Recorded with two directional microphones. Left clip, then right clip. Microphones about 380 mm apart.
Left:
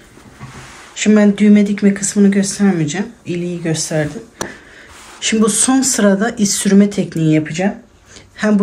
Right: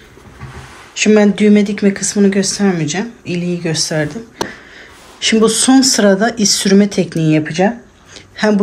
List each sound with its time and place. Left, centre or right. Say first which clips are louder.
0.9 s speech: right 3 dB; centre
5.2 s speech: right 4 dB; centre